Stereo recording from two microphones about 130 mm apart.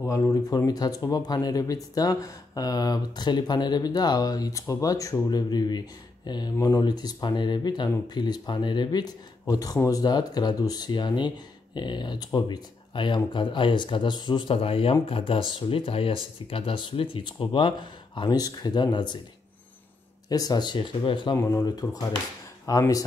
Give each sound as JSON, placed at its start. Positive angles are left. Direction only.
{"t": 0.0, "sound": "speech", "side_deg": 25}
{"t": 20.2, "sound": "speech", "side_deg": 30}
{"t": 21.4, "sound": "speech", "side_deg": 20}